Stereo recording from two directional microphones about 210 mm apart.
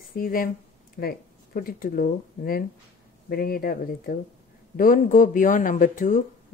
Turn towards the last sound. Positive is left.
turn(degrees=40)  # may be behind; listen again after turning